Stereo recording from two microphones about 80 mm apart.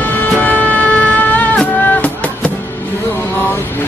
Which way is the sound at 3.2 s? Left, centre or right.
Left.